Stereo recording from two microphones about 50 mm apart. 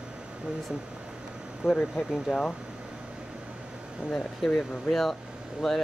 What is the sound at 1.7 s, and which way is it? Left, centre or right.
Speech, centre.